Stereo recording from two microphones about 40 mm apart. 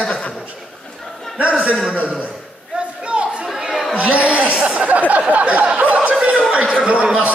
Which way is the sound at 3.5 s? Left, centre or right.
Centre.